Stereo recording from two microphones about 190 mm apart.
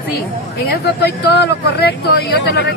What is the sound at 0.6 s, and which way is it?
Speech, 55° left (ahead or behind).